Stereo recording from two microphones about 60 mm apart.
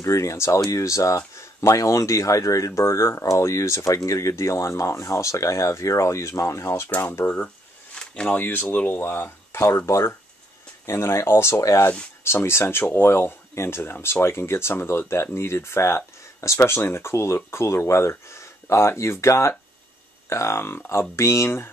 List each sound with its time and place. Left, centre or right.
0.0 s speech: left
7.0 s speech: left
7.9 s a sound: centre
8.3 s speech: left
9.8 s speech: left
10.9 s speech: left